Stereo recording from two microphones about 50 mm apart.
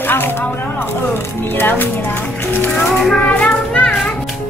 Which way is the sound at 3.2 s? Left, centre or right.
Left.